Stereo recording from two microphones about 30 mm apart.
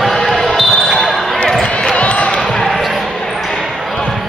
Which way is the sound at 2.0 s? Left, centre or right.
Left.